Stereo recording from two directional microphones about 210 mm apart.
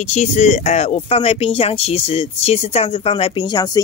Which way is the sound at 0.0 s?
30° left (ahead or behind).